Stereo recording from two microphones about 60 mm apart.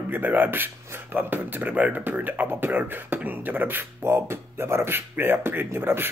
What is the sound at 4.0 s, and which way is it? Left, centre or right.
Speech, right.